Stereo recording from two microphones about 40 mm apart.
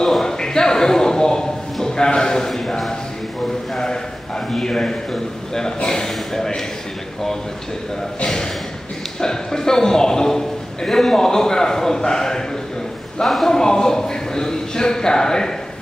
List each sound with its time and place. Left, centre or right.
0.0 s a sound: centre
3.7 s a sound: centre
5.9 s a man's voice: centre
9.2 s a man's voice: centre
13.2 s a man's voice: centre
13.5 s a man's voice: centre